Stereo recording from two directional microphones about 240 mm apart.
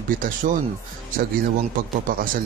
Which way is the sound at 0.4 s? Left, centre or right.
Right.